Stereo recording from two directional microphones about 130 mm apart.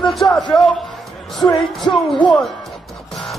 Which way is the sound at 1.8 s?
10° left (ahead or behind).